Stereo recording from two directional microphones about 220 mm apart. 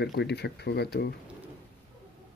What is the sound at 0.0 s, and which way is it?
Speech, 50° left (ahead or behind).